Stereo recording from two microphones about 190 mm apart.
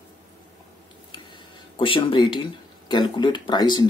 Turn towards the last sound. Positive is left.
turn(degrees=25)  # may be behind; listen again after turning